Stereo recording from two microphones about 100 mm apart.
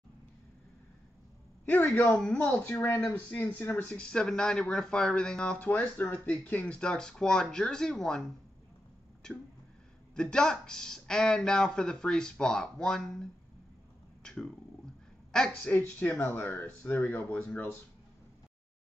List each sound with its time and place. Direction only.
2.3 s speech: 20° left (ahead or behind)
10.1 s speech: 5° left (ahead or behind)
14.2 s a sound: 5° left (ahead or behind)
15.3 s speech: 10° left (ahead or behind)